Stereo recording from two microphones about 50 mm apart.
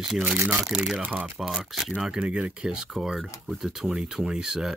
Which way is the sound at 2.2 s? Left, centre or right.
Right.